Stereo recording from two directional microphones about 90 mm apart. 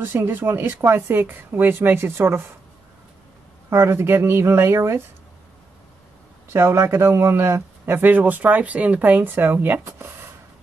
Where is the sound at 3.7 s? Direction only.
30° right (ahead or behind).